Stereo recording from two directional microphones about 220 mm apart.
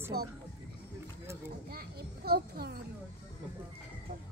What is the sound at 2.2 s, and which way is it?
Speech, 45° right (ahead or behind).